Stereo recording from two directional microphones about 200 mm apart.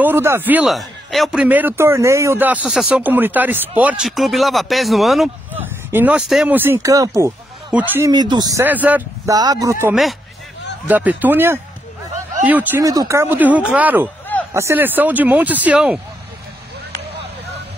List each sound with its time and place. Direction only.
0.0 s a man's voice: 10° right (ahead or behind)
8.1 s a man's voice: 20° right (ahead or behind)